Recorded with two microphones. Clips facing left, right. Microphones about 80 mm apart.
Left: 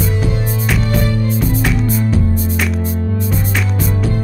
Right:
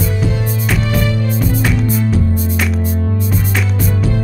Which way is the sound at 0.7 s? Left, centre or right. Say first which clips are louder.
Even; centre.